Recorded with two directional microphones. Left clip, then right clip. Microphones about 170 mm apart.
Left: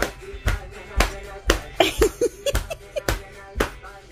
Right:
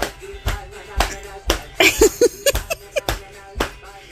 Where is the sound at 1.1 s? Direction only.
10° right (ahead or behind).